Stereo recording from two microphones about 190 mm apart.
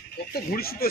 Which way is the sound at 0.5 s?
55° left (ahead or behind).